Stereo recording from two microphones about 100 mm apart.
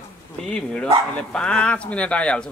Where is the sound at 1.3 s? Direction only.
10° left (ahead or behind).